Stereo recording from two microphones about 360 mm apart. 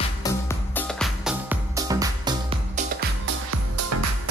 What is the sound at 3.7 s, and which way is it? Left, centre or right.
Music, right.